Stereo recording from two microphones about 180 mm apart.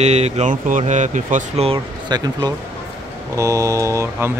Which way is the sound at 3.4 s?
15° right (ahead or behind).